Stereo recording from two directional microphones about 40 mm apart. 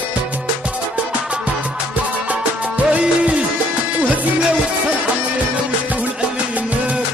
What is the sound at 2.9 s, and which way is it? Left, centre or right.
Music, right.